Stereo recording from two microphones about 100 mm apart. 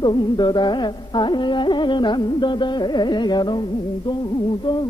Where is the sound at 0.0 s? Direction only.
50° left (ahead or behind).